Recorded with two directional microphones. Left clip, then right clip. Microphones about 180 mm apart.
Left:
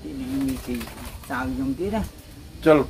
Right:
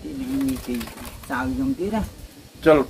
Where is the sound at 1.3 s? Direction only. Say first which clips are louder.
Right 2 dB; 5° right (ahead or behind).